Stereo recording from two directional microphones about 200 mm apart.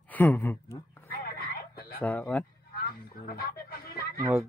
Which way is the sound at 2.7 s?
50° left (ahead or behind).